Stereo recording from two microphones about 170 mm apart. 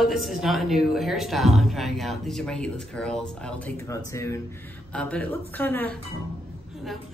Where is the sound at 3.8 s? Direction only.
15° left (ahead or behind).